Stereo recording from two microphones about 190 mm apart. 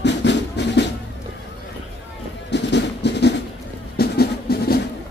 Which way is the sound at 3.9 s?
55° left (ahead or behind).